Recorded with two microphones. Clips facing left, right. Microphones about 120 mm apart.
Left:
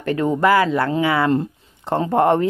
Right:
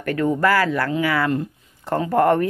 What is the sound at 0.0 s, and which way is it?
Speech, 25° left (ahead or behind).